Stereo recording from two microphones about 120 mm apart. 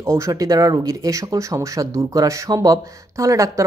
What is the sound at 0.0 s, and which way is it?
Speech, 25° right (ahead or behind).